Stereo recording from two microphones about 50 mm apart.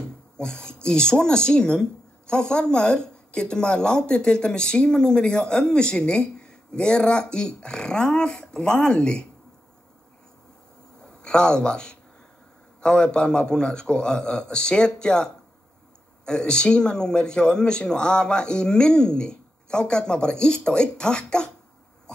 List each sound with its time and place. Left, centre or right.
0.4 s speech: centre
11.0 s speech: centre
16.3 s speech: centre